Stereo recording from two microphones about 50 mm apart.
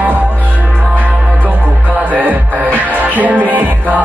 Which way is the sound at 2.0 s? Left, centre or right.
Right.